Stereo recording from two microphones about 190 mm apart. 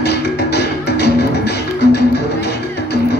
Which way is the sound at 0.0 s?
60° left (ahead or behind).